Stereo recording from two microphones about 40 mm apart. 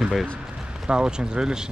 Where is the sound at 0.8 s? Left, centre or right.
Right.